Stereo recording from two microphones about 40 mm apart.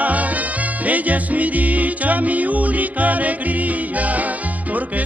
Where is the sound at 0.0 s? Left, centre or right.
Right.